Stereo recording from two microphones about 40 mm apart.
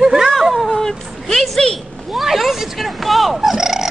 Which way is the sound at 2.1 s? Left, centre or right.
Centre.